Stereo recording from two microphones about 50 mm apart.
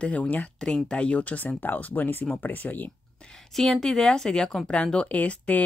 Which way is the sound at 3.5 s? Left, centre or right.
Centre.